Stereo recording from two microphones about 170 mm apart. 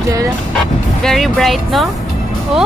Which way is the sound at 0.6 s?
Centre (ahead or behind).